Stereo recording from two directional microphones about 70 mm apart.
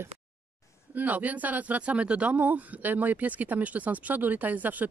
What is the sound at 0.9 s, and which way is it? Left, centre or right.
Speech, right.